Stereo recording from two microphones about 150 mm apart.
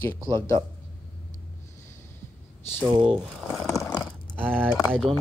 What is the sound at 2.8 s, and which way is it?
Speech, 30° right (ahead or behind).